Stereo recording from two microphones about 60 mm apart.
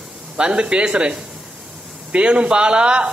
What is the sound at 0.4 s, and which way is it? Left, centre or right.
A man's voice, centre.